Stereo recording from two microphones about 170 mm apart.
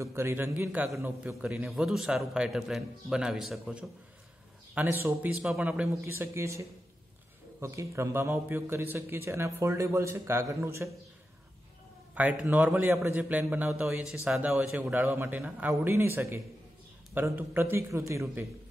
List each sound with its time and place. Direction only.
0.0 s a man's voice: 15° right (ahead or behind)
7.6 s a man's voice: 15° right (ahead or behind)
12.2 s a man's voice: 10° right (ahead or behind)